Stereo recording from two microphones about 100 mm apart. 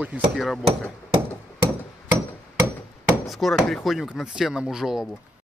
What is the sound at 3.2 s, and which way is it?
Speech, centre (ahead or behind).